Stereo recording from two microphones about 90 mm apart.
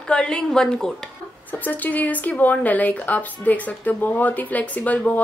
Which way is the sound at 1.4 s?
20° left (ahead or behind).